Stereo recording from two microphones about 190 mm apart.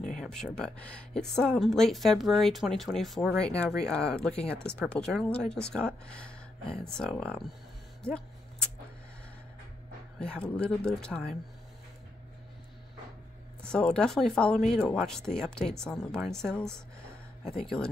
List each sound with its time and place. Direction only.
0.2 s speech: centre (ahead or behind)
10.1 s speech: 5° left (ahead or behind)
13.6 s speech: 5° left (ahead or behind)